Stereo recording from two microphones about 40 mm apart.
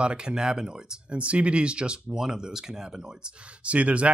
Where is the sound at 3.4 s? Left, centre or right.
Right.